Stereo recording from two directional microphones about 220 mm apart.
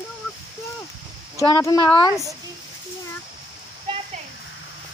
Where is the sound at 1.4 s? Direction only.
15° left (ahead or behind).